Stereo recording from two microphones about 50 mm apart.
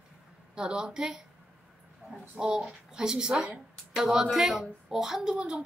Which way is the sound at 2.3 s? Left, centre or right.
Centre.